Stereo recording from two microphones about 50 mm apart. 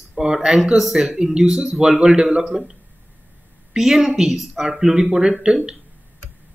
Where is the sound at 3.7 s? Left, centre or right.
Centre.